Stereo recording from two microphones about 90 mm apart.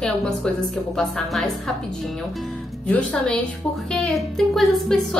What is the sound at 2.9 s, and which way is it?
Speech, 10° left (ahead or behind).